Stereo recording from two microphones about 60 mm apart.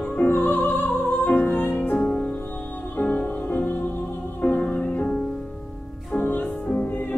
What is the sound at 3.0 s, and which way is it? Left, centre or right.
Music, left.